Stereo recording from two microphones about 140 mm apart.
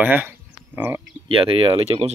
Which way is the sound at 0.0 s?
10° right (ahead or behind).